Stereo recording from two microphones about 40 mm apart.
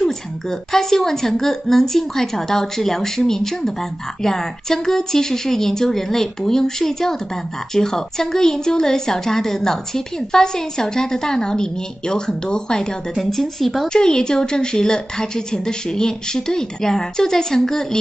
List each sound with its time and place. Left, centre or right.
0.0 s a woman's voice: centre
13.1 s speech: centre
13.9 s a woman's voice: centre